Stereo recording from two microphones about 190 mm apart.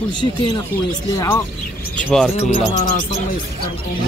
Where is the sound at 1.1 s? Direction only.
15° left (ahead or behind).